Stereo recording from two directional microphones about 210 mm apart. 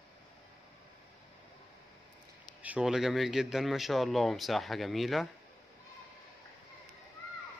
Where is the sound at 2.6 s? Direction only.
5° right (ahead or behind).